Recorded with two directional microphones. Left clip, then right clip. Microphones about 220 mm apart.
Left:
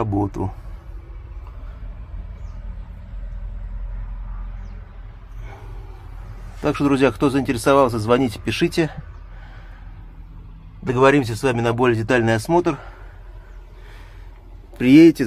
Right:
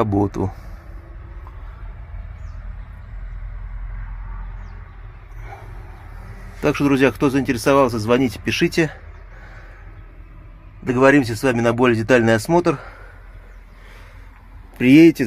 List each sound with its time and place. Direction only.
0.0 s speech: 25° right (ahead or behind)
6.6 s speech: 10° right (ahead or behind)
10.8 s speech: 10° right (ahead or behind)
14.8 s speech: 15° right (ahead or behind)